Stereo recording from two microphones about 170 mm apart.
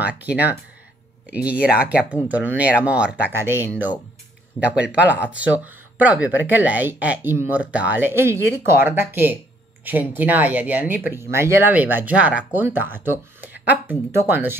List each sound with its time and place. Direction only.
0.0 s speech: 10° right (ahead or behind)